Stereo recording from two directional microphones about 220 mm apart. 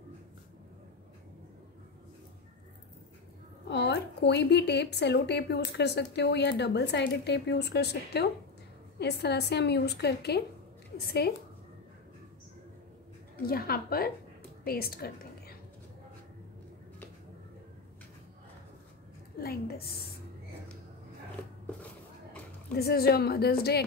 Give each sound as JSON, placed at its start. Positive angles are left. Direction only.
{"t": 3.6, "sound": "a woman's voice", "side_deg": 50}
{"t": 13.5, "sound": "a woman's voice", "side_deg": 45}
{"t": 19.4, "sound": "a woman's voice", "side_deg": 45}
{"t": 22.8, "sound": "a woman's voice", "side_deg": 45}